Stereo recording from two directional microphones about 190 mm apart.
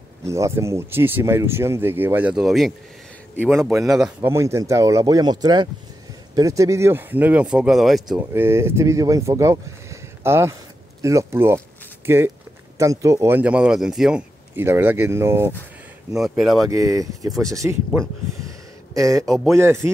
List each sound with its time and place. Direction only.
0.2 s speech: 15° right (ahead or behind)
4.3 s speech: 15° right (ahead or behind)
8.3 s speech: 15° right (ahead or behind)
16.1 s speech: centre (ahead or behind)
16.6 s speech: 15° right (ahead or behind)
19.2 s speech: centre (ahead or behind)
19.5 s speech: 15° right (ahead or behind)